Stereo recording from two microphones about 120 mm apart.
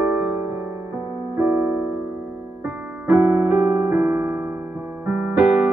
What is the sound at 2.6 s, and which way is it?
Music, 25° right (ahead or behind).